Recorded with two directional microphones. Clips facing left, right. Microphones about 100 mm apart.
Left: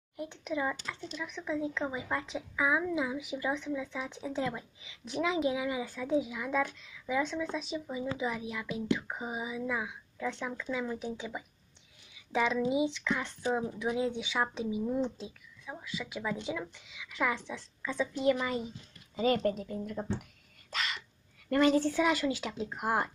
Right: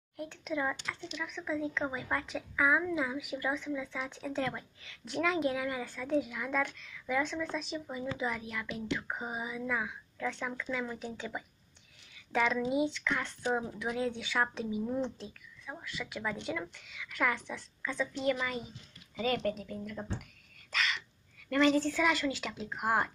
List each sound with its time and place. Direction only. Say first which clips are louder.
0.5 s a woman's voice: left 1 dB; 5° left (ahead or behind)
14.9 s a woman's voice: left 2 dB; centre (ahead or behind); by 18.6 s 20° left (ahead or behind)
19.1 s a woman's voice: left 4 dB; 30° left (ahead or behind)
20.7 s whispering: right 2 dB; 35° left (ahead or behind)
21.7 s a woman's voice: left 2 dB; 20° left (ahead or behind)